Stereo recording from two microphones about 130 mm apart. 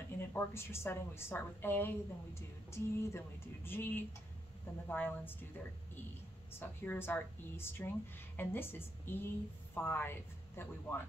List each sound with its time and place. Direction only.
0.2 s a woman's voice: 15° left (ahead or behind)
6.6 s a woman's voice: 15° left (ahead or behind)